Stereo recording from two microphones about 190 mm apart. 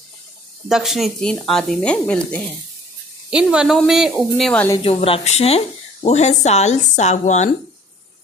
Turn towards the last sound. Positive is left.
turn(degrees=40)  # may be behind; listen again after turning